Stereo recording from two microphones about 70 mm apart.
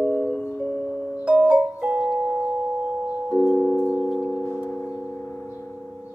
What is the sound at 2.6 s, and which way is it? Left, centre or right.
Singing bowl, centre.